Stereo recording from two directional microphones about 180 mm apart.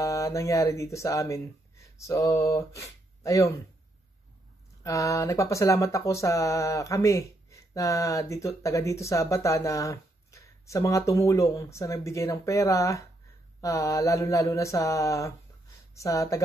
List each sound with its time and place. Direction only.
0.0 s speech: 15° left (ahead or behind)
4.8 s speech: 15° left (ahead or behind)